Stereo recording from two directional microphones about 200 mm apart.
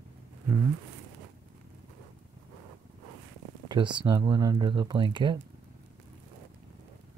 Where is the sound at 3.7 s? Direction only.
25° right (ahead or behind).